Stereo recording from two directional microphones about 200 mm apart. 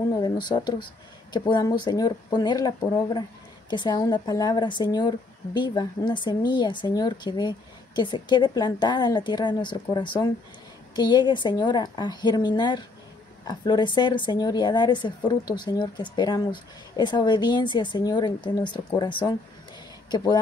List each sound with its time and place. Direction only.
0.1 s a woman's voice: 20° left (ahead or behind)